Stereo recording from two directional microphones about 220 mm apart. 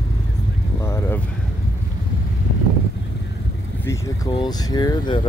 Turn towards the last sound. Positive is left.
turn(degrees=20)  # may be behind; listen again after turning